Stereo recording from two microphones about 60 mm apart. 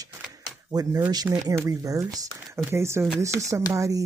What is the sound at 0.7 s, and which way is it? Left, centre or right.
Speech, right.